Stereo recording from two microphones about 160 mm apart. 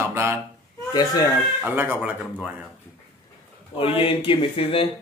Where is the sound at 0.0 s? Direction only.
15° right (ahead or behind).